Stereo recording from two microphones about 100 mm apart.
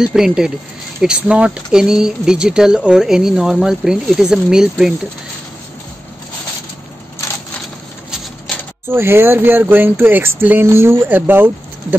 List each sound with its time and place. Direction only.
0.0 s speech: 5° right (ahead or behind)
8.8 s speech: 25° right (ahead or behind)